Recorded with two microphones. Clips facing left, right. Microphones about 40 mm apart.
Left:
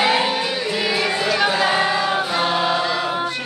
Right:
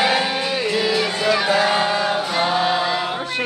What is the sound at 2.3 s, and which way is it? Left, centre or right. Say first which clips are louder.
Chant: right 2 dB; centre.